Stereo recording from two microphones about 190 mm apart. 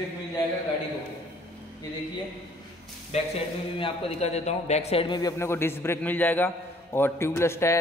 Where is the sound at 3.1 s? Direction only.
35° left (ahead or behind).